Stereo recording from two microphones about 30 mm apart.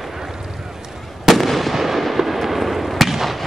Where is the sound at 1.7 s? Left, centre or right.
Centre.